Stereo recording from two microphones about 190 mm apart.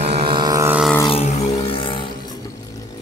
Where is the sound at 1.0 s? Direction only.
30° left (ahead or behind).